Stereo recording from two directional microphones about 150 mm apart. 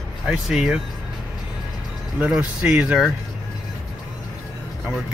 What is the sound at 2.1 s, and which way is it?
Speech, 5° right (ahead or behind).